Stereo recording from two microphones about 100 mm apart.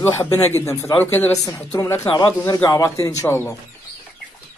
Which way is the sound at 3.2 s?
20° left (ahead or behind).